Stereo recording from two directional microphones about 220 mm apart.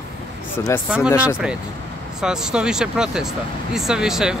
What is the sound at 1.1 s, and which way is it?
Speech, 10° left (ahead or behind).